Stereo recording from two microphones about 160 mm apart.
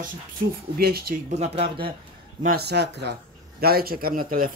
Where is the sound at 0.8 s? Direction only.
75° right (ahead or behind).